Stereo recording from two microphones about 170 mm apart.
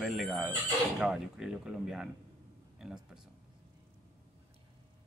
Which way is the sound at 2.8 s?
Centre (ahead or behind).